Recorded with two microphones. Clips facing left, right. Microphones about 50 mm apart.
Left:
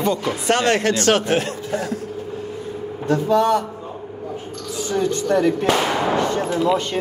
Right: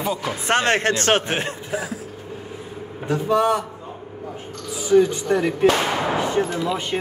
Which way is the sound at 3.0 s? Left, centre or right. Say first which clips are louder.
Left 2 dB; centre.